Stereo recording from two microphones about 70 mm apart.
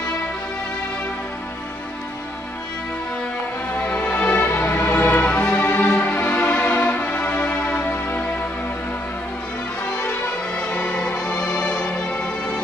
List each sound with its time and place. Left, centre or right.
3.7 s music: left
10.5 s music: centre